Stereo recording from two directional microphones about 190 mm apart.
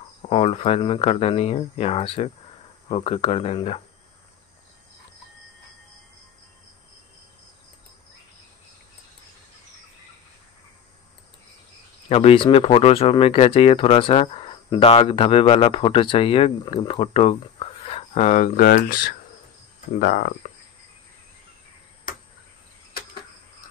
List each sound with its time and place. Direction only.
0.3 s speech: 30° left (ahead or behind)
12.1 s speech: 30° left (ahead or behind); by 20.5 s 50° left (ahead or behind)